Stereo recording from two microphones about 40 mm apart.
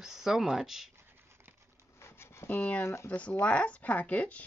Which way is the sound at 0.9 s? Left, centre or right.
Right.